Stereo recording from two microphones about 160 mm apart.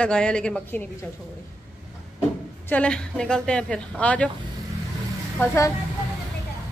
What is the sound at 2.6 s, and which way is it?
Speech, 10° left (ahead or behind).